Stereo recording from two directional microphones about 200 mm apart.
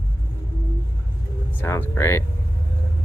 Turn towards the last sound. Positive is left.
turn(degrees=15)  # may be behind; listen again after turning